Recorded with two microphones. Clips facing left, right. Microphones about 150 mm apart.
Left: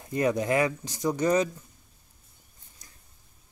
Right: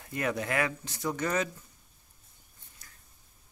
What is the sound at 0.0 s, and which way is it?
Speech, 20° left (ahead or behind).